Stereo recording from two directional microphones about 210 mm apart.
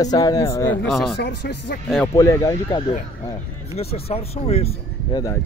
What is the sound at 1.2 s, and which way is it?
Speech, 50° left (ahead or behind).